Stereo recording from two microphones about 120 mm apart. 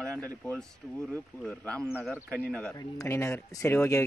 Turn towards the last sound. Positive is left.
turn(degrees=25)  # may be behind; listen again after turning